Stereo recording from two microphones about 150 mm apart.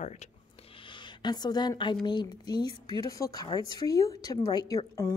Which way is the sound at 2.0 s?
30° left (ahead or behind).